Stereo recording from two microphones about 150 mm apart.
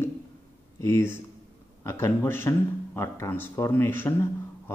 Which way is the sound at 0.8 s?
15° left (ahead or behind).